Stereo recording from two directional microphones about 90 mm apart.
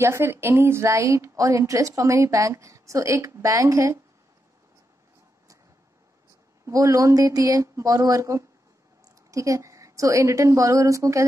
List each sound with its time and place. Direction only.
0.0 s speech: 30° right (ahead or behind)
6.6 s speech: 35° right (ahead or behind)